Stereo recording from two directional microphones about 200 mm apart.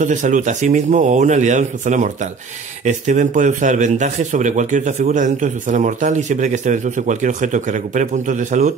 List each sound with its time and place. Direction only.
0.0 s a man's voice: 40° right (ahead or behind)